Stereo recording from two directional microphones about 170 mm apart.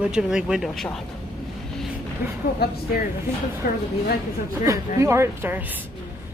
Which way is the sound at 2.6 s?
70° left (ahead or behind).